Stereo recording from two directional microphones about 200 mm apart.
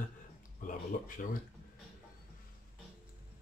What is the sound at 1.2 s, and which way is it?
Speech, 45° left (ahead or behind).